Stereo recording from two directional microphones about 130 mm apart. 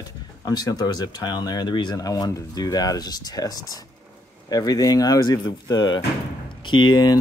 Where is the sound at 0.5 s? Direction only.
30° left (ahead or behind).